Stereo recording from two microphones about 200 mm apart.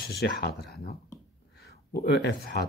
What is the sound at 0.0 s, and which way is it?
Speech, 50° left (ahead or behind).